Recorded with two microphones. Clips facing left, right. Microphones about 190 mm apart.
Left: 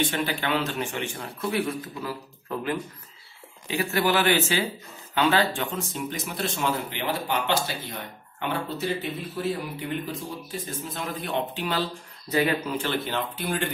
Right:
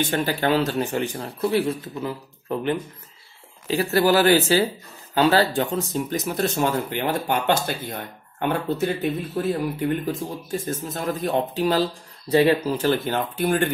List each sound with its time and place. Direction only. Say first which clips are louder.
0.0 s speech: right 4 dB; 45° right (ahead or behind); by 2.1 s 25° right (ahead or behind)
3.6 s speech: right 5 dB; 35° right (ahead or behind)
12.6 s speech: right 6 dB; 45° right (ahead or behind)